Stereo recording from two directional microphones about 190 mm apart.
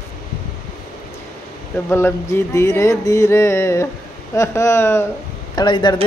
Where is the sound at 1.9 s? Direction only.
15° left (ahead or behind).